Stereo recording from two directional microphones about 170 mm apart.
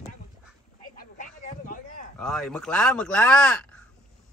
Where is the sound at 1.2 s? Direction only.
50° left (ahead or behind).